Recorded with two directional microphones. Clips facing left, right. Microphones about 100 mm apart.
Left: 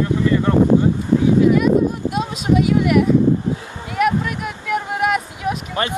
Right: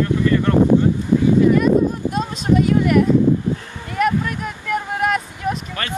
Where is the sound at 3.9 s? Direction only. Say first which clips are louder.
Left 1 dB; 5° left (ahead or behind).